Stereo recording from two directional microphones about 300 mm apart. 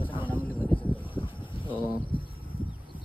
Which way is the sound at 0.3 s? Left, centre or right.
Centre.